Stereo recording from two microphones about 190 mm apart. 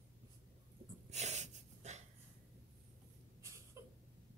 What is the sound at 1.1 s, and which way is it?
Snort, 35° right (ahead or behind).